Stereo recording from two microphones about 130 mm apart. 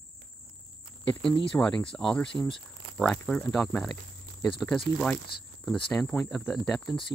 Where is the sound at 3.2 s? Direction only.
5° left (ahead or behind).